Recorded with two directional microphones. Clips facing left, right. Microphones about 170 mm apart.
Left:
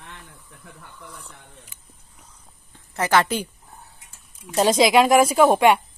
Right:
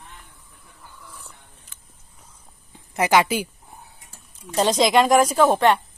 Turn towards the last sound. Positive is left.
turn(degrees=10)  # may be behind; listen again after turning